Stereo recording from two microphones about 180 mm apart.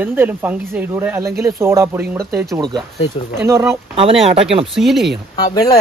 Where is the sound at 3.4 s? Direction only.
15° right (ahead or behind).